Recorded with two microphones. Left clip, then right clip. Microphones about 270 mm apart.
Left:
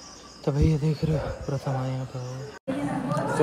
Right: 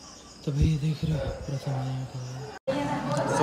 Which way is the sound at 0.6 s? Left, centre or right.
Centre.